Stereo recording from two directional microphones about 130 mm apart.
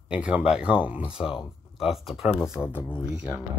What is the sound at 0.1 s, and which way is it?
Speech, 10° right (ahead or behind).